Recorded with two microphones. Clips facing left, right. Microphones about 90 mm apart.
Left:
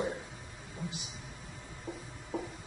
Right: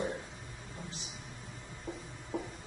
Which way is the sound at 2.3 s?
5° left (ahead or behind).